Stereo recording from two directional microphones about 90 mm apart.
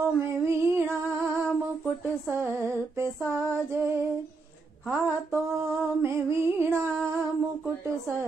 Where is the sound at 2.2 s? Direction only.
25° right (ahead or behind).